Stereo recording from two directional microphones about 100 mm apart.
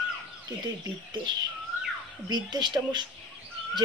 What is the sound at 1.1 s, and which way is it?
Speech, 45° right (ahead or behind).